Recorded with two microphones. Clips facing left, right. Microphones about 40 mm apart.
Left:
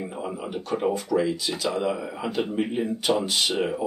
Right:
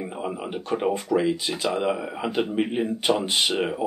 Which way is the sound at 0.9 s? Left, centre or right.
Right.